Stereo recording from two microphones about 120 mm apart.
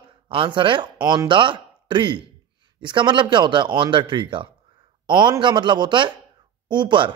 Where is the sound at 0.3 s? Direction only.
45° right (ahead or behind).